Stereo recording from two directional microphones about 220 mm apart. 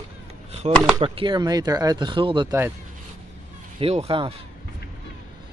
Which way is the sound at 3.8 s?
25° right (ahead or behind).